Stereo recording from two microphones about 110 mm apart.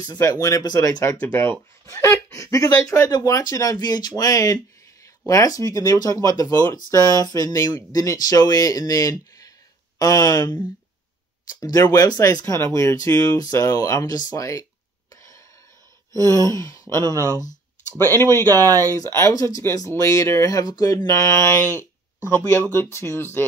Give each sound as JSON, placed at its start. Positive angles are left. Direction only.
{"t": 0.0, "sound": "speech", "side_deg": 35}
{"t": 1.2, "sound": "speech", "side_deg": 15}
{"t": 16.3, "sound": "speech", "side_deg": 30}
{"t": 16.9, "sound": "speech", "side_deg": -30}
{"t": 18.7, "sound": "speech", "side_deg": -30}
{"t": 18.9, "sound": "speech", "side_deg": 30}